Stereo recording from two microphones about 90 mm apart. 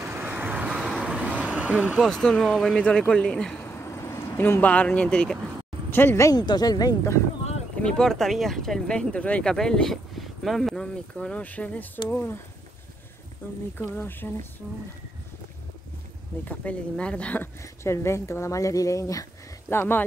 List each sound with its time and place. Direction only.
0.0 s vehicle: 25° right (ahead or behind)
0.7 s vehicle: 5° right (ahead or behind)
2.0 s speech: 5° left (ahead or behind)
3.5 s a sound: 25° left (ahead or behind); by 5.4 s 10° left (ahead or behind)
5.9 s speech: 25° left (ahead or behind)
6.3 s speech: 50° left (ahead or behind)
7.8 s speech: 5° left (ahead or behind)
13.4 s speech: 20° left (ahead or behind)
16.4 s speech: 15° left (ahead or behind)
17.6 s speech: 30° left (ahead or behind)
19.7 s speech: 25° left (ahead or behind)